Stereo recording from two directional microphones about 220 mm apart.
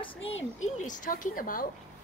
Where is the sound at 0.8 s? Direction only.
35° left (ahead or behind).